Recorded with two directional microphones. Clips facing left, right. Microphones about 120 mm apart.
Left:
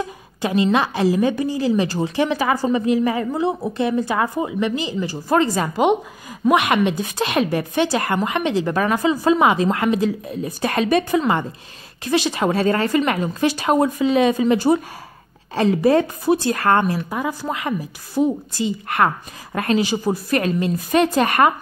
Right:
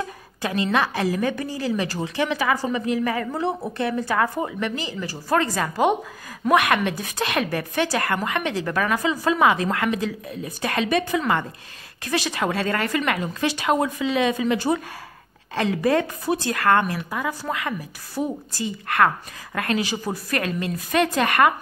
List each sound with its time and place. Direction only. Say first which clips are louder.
0.4 s speech: left 4 dB; 20° left (ahead or behind)